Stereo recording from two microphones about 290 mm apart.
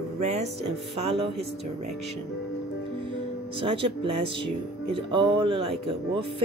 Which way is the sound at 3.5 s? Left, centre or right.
Centre.